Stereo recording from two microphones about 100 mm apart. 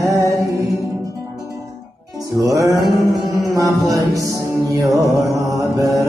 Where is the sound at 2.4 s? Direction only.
30° right (ahead or behind).